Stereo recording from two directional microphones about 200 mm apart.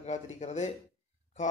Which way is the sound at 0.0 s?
35° left (ahead or behind).